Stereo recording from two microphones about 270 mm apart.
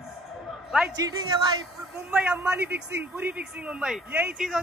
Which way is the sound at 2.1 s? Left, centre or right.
Centre.